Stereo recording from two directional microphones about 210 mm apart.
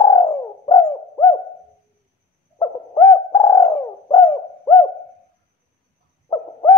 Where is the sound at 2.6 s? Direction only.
15° left (ahead or behind).